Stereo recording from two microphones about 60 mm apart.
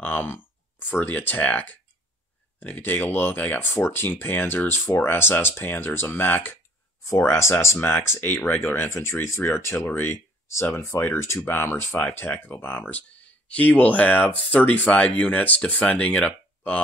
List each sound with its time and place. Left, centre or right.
0.0 s speech: left
7.1 s speech: left
8.2 s speech: left
8.7 s speech: left
12.0 s speech: left